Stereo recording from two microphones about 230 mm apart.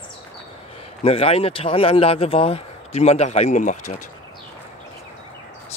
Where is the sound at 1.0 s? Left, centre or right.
Left.